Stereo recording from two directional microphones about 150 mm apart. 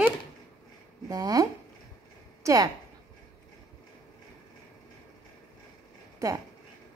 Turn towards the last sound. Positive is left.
turn(degrees=-20)  # may be behind; listen again after turning